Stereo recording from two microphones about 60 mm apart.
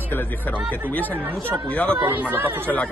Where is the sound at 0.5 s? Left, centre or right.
Right.